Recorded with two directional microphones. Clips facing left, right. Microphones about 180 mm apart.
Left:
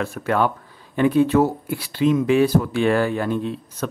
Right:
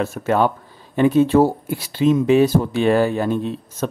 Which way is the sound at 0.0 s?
25° right (ahead or behind).